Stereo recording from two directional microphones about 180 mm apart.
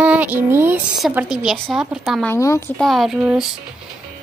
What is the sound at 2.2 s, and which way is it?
Speech, 15° left (ahead or behind).